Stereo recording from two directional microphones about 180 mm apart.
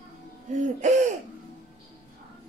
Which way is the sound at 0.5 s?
40° right (ahead or behind).